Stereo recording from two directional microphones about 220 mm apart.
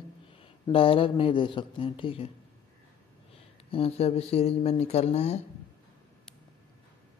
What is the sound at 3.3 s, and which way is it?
A man's voice, 25° left (ahead or behind).